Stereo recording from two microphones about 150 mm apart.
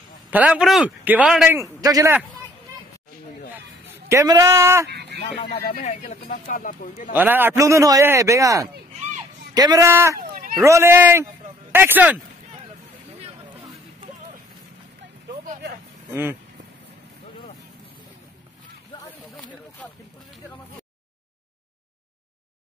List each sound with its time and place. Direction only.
0.3 s speech: 10° right (ahead or behind)
1.6 s a man's voice: 25° right (ahead or behind)
4.1 s a man's voice: 20° right (ahead or behind)
5.7 s speech: 60° left (ahead or behind)
7.2 s a man's voice: 15° right (ahead or behind)